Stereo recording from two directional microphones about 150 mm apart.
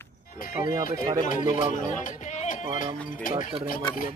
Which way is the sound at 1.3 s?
60° left (ahead or behind).